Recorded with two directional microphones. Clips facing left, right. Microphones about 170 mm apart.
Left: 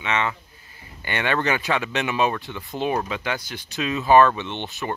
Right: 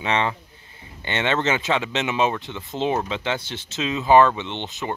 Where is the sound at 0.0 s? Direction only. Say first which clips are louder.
Right 2 dB; 30° right (ahead or behind).